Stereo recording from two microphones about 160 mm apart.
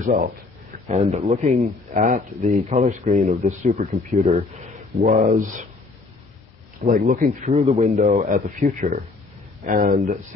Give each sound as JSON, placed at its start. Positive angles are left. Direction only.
{"t": 0.8, "sound": "speech", "side_deg": -45}
{"t": 4.2, "sound": "a man's voice", "side_deg": -40}
{"t": 5.0, "sound": "speech", "side_deg": -55}
{"t": 6.8, "sound": "a man's voice", "side_deg": -45}
{"t": 7.9, "sound": "speech", "side_deg": -55}
{"t": 8.5, "sound": "speech", "side_deg": -45}
{"t": 9.7, "sound": "speech", "side_deg": -60}